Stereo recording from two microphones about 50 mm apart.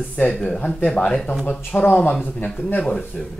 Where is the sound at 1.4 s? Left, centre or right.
Left.